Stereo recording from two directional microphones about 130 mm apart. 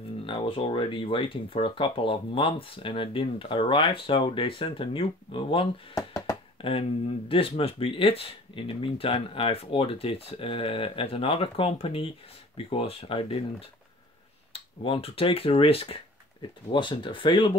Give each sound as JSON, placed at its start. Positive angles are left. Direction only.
{"t": 0.3, "sound": "speech", "side_deg": 45}
{"t": 5.9, "sound": "a sound", "side_deg": 30}
{"t": 6.6, "sound": "speech", "side_deg": 45}